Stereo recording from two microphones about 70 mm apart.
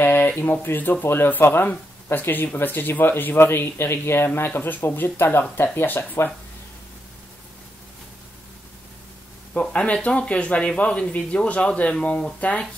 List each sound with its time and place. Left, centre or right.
0.0 s a sound: left
0.4 s speech: left
9.5 s speech: centre